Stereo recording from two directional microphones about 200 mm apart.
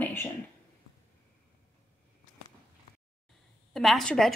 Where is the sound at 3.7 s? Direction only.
Centre (ahead or behind).